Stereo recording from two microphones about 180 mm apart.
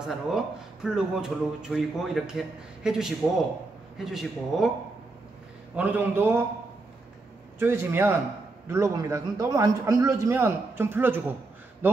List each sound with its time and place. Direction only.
0.0 s a man's voice: centre (ahead or behind)
5.8 s a man's voice: 10° right (ahead or behind)
7.5 s a man's voice: 10° right (ahead or behind)